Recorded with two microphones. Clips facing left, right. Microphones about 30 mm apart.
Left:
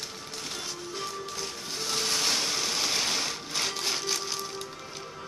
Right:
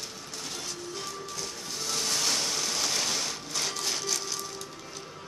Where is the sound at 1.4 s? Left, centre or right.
Left.